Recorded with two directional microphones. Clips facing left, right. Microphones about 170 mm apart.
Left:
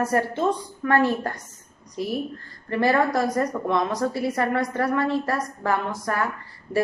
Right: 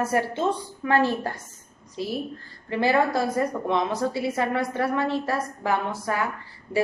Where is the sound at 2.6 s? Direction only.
20° right (ahead or behind).